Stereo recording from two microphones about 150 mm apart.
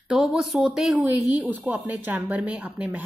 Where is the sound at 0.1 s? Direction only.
5° right (ahead or behind).